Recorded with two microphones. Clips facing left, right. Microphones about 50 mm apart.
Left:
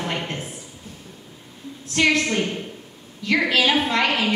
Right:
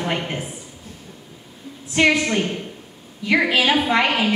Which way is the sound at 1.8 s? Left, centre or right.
Centre.